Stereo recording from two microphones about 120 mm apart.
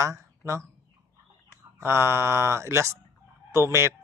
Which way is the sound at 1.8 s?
20° right (ahead or behind).